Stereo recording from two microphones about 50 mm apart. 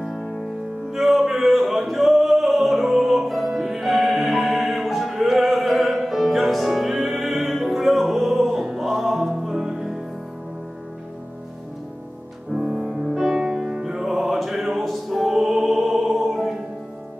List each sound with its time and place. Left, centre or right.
0.0 s music: centre
5.1 s opera: centre
9.6 s music: centre
12.5 s music: centre
13.1 s music: centre